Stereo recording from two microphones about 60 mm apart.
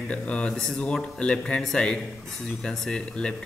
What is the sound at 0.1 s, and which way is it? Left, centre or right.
Speech, centre.